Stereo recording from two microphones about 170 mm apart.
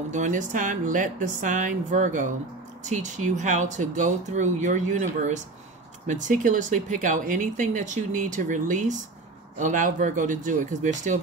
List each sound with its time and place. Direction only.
0.1 s speech: 45° right (ahead or behind)